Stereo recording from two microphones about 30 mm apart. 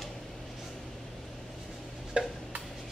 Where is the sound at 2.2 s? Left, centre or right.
Right.